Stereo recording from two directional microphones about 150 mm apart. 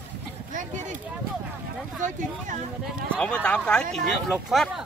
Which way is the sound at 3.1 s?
5° left (ahead or behind).